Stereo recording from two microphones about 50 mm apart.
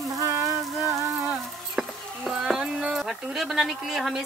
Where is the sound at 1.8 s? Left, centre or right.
Centre.